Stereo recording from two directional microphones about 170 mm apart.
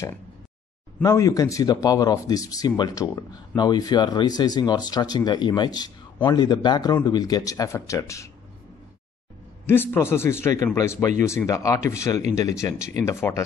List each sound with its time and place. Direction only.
1.0 s speech: 20° left (ahead or behind)
9.7 s speech: 15° left (ahead or behind)